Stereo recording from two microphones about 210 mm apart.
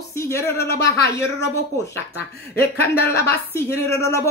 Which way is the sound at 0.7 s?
50° left (ahead or behind).